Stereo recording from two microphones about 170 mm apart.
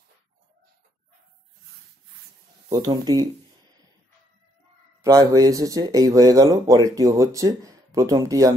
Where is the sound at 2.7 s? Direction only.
25° right (ahead or behind).